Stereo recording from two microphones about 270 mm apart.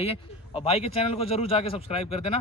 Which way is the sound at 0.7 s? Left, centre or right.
Left.